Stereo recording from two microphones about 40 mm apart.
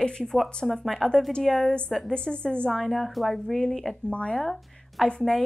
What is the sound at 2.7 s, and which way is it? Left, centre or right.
A woman's voice, centre.